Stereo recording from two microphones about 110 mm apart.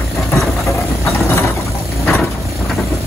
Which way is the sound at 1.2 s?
25° left (ahead or behind).